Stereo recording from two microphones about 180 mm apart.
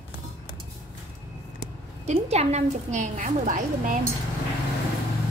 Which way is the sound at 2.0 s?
40° right (ahead or behind).